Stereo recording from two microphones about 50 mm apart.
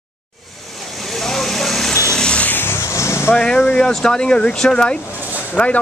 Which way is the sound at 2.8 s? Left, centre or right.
Left.